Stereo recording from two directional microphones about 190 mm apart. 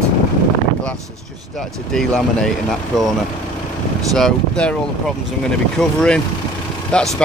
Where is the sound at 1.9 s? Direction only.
5° left (ahead or behind).